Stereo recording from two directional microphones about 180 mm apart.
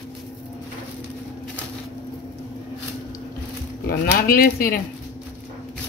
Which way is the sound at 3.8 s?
55° left (ahead or behind).